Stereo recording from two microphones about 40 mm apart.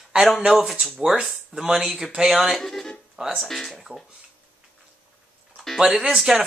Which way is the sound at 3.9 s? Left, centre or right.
Right.